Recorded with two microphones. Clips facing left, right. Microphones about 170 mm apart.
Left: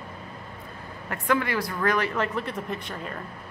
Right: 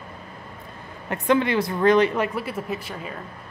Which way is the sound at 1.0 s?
20° right (ahead or behind).